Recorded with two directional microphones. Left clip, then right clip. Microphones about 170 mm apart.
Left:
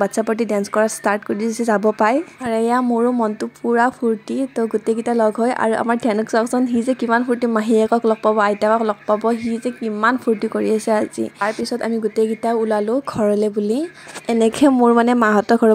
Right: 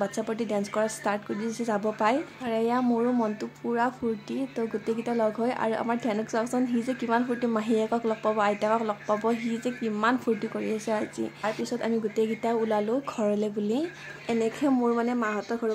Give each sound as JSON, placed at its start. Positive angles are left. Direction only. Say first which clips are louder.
{"t": 0.0, "sound": "a woman's voice", "louder": "left 11 dB", "side_deg": 45}